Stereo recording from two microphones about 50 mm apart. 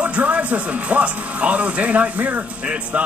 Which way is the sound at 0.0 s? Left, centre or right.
Right.